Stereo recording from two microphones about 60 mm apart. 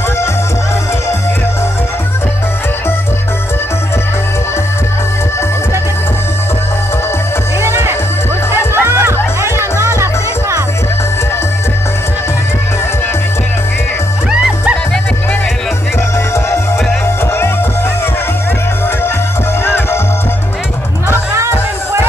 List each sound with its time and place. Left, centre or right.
7.6 s music: right
14.3 s music: centre
19.6 s music: left